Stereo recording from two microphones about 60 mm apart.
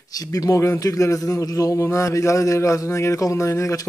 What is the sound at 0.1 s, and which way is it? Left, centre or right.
A man's voice, left.